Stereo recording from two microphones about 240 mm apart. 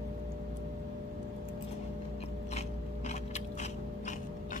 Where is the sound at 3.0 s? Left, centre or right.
Left.